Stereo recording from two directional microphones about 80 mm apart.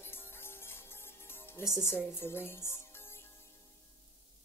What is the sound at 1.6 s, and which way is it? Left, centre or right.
A woman's voice, left.